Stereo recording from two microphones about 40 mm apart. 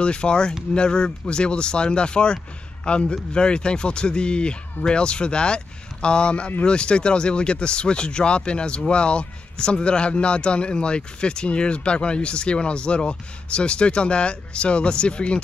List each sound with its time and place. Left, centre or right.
0.0 s speech: left